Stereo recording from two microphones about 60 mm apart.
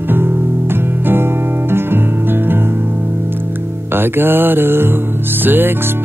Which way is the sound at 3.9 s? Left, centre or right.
Right.